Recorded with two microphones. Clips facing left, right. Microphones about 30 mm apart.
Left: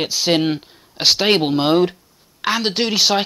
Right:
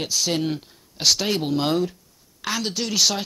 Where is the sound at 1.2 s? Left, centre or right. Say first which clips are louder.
Left 7 dB; left.